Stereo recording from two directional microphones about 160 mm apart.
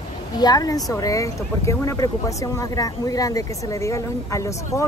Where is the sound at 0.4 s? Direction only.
25° left (ahead or behind).